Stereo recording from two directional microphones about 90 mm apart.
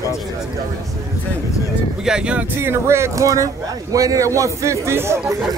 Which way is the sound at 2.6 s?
30° right (ahead or behind).